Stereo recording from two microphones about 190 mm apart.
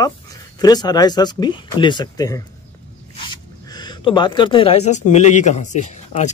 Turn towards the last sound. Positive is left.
turn(degrees=40)  # may be behind; listen again after turning